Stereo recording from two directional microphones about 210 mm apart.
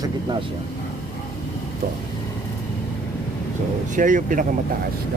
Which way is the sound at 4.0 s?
40° right (ahead or behind).